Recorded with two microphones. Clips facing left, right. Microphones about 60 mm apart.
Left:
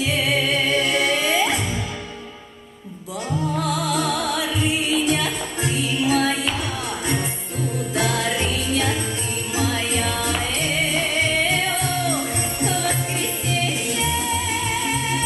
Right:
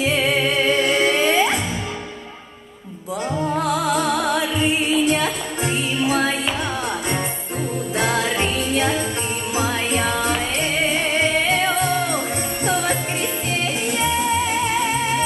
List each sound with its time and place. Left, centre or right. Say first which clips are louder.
0.0 s music: right 2 dB; right
3.5 s music: right 3 dB; right
8.0 s jingle bell: right 2 dB; right
9.6 s music: right 2 dB; right